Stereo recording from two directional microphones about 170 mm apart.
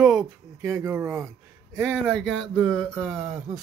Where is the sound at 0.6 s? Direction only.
15° right (ahead or behind).